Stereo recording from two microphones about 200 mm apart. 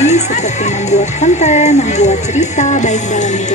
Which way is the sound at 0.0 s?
35° left (ahead or behind).